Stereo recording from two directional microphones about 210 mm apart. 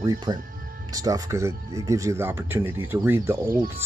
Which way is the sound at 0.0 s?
20° right (ahead or behind).